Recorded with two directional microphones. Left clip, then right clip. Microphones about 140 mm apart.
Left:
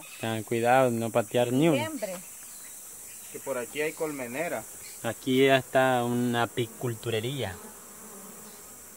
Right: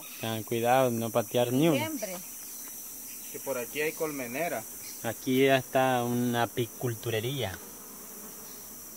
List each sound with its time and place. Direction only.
0.2 s speech: 30° left (ahead or behind)
1.5 s cricket: 10° left (ahead or behind)
1.8 s speech: 65° left (ahead or behind)
3.4 s cricket: 10° left (ahead or behind)
5.0 s cricket: 20° left (ahead or behind); by 7.5 s centre (ahead or behind)